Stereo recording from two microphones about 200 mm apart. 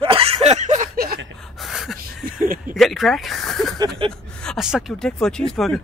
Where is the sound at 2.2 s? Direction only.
45° right (ahead or behind).